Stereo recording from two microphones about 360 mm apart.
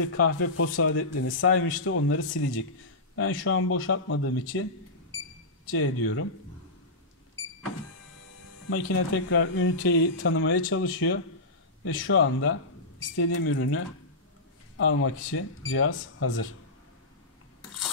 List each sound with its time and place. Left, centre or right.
0.0 s speech: left
5.7 s speech: left
8.6 s speech: left